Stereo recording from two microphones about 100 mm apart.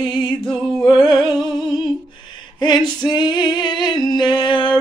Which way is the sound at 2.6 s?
50° left (ahead or behind).